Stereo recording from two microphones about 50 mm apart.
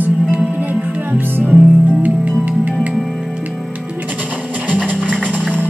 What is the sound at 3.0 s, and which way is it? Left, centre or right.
Music, centre.